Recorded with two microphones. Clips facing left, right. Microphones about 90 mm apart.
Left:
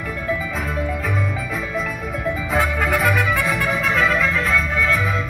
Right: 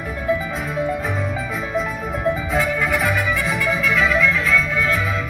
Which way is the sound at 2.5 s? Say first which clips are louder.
Even; 55° left (ahead or behind).